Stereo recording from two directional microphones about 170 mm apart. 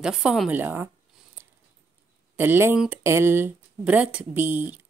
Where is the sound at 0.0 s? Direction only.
5° right (ahead or behind).